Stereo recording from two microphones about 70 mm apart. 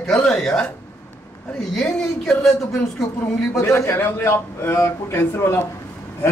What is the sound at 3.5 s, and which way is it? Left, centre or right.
A man's voice, left.